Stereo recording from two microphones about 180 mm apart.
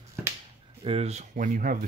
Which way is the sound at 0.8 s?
35° right (ahead or behind).